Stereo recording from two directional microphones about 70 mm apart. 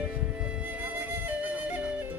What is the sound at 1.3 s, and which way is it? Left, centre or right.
Flute, right.